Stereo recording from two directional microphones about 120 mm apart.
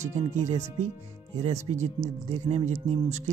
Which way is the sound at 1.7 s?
50° right (ahead or behind).